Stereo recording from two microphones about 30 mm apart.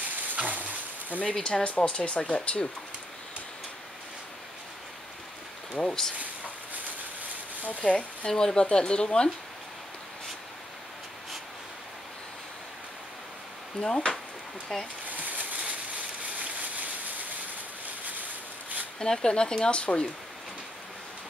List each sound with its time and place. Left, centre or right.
0.0 s a sound: right
1.4 s speech: left
5.8 s speech: centre
7.8 s speech: left
8.5 s speech: left
13.7 s speech: left
14.7 s speech: centre
15.0 s a sound: right
16.3 s rain on surface: right
18.2 s a sound: right
18.9 s speech: left